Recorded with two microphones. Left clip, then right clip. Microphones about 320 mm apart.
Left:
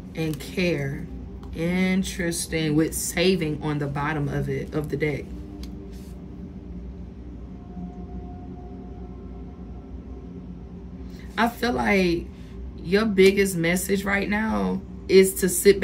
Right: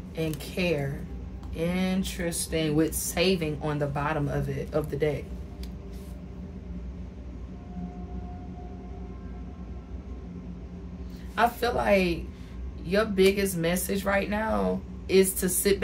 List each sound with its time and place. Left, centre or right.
0.5 s a woman's voice: right
1.6 s speech: centre
4.9 s a woman's voice: right
11.6 s speech: centre